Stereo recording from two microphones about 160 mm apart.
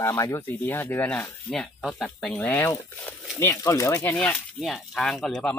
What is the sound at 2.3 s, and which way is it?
Speech, 15° left (ahead or behind).